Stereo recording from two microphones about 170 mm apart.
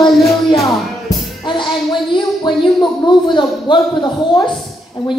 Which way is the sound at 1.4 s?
25° left (ahead or behind).